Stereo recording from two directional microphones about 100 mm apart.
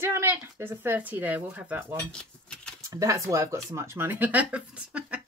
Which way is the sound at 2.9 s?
35° right (ahead or behind).